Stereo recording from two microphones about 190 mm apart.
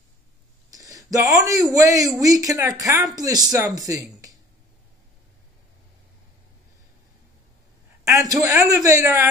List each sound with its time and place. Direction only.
0.7 s speech: 20° right (ahead or behind)
8.1 s speech: 20° right (ahead or behind)